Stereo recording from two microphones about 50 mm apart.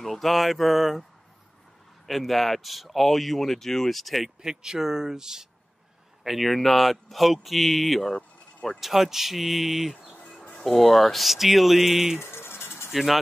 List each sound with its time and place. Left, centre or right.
0.0 s speech: centre
2.0 s speech: centre
4.4 s speech: centre
6.2 s speech: centre
12.2 s a sound: left
12.9 s speech: centre